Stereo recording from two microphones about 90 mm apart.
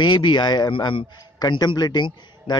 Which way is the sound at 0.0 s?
60° left (ahead or behind).